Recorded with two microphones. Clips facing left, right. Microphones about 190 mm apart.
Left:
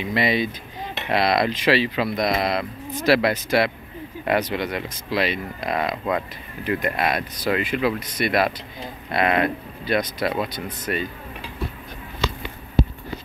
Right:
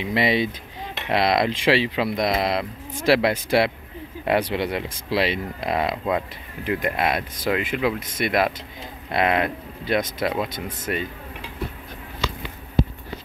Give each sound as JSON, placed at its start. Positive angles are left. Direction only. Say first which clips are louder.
{"t": 0.0, "sound": "speech", "louder": "right 1 dB", "side_deg": -25}